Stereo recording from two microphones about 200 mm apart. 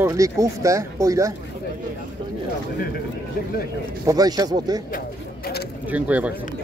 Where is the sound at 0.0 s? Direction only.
15° right (ahead or behind).